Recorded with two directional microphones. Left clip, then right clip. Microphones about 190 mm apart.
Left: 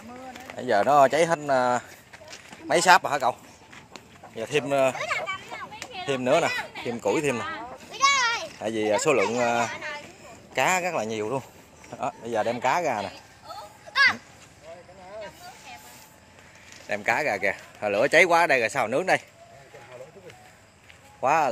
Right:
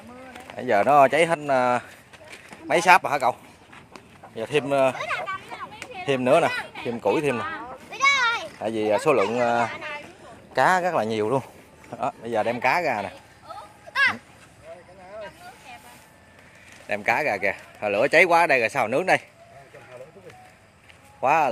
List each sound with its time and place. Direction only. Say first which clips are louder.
0.6 s speech: right 2 dB; 10° right (ahead or behind)
4.4 s a sound: right 2 dB; 15° right (ahead or behind)
5.9 s speech: right 3 dB; 25° right (ahead or behind)
6.8 s speech: right 3 dB; 5° right (ahead or behind)
7.6 s a sound: right 1 dB; 15° right (ahead or behind)
8.5 s speech: right 2 dB; 10° right (ahead or behind)
9.7 s a sound: right 1 dB; 30° right (ahead or behind)
11.9 s speech: right 2 dB; 15° right (ahead or behind)
13.5 s a sound: right 1 dB; 15° right (ahead or behind)
15.1 s vehicle: right 1 dB; 20° right (ahead or behind)
16.8 s speech: right 2 dB; 10° right (ahead or behind)
21.2 s speech: right 2 dB; 10° right (ahead or behind)